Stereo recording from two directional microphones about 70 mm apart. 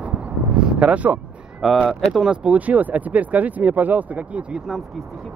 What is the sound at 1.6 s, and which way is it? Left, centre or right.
Speech, centre.